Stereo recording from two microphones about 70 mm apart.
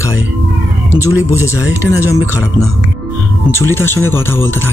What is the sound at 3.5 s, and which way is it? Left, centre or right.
Speech, left.